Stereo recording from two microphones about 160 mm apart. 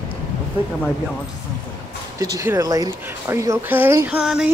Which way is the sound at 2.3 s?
20° right (ahead or behind).